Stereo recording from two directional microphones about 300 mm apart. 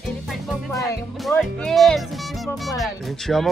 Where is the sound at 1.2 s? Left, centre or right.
Centre.